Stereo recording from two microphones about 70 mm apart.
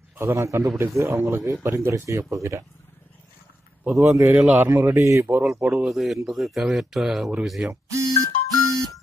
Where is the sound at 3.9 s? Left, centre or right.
Right.